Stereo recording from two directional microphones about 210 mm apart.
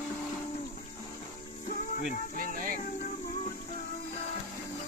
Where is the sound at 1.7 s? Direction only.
40° left (ahead or behind).